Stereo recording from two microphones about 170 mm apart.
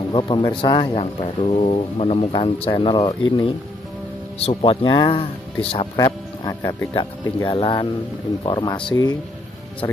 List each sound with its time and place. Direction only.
0.1 s speech: 30° left (ahead or behind)
4.5 s speech: 35° left (ahead or behind)
5.9 s speech: 20° left (ahead or behind)